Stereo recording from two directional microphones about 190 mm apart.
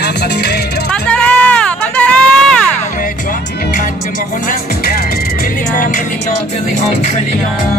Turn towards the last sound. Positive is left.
turn(degrees=45)  # may be behind; listen again after turning